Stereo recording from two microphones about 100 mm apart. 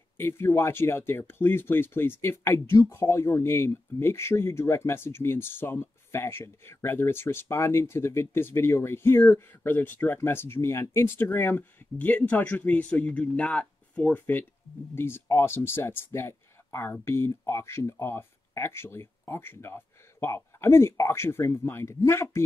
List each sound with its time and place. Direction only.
0.2 s speech: 25° left (ahead or behind)